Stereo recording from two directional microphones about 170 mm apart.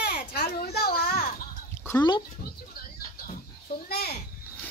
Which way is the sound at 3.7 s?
70° left (ahead or behind).